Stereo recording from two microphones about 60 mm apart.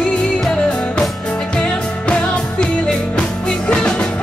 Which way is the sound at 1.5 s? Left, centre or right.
Centre.